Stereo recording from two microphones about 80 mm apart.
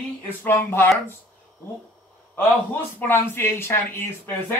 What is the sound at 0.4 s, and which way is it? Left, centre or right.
Speech, left.